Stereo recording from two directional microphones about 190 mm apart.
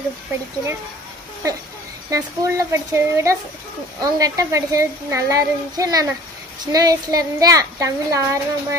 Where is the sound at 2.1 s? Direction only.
15° right (ahead or behind).